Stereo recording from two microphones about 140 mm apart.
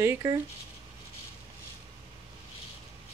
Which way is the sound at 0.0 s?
25° right (ahead or behind).